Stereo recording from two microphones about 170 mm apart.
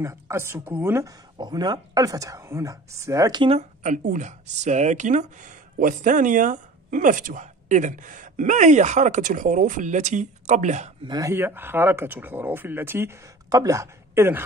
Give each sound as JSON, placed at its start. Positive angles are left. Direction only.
{"t": 0.0, "sound": "speech", "side_deg": -15}
{"t": 3.8, "sound": "speech", "side_deg": -50}
{"t": 11.1, "sound": "speech", "side_deg": -20}